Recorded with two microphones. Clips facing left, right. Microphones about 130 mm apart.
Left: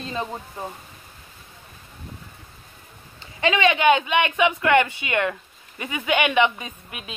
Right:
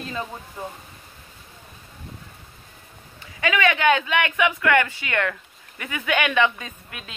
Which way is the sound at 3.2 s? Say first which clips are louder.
Left 2 dB; 25° left (ahead or behind).